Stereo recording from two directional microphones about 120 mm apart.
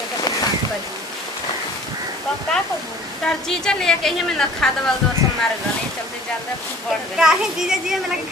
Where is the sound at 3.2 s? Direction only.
5° left (ahead or behind).